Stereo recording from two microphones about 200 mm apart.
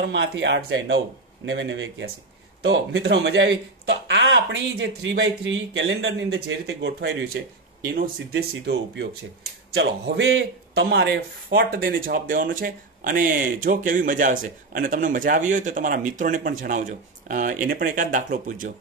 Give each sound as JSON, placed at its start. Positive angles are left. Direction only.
{"t": 0.0, "sound": "speech", "side_deg": -65}
{"t": 7.9, "sound": "a man's voice", "side_deg": -50}
{"t": 9.8, "sound": "a man's voice", "side_deg": -65}